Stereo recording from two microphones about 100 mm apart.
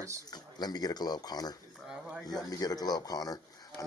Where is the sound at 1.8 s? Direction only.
5° right (ahead or behind).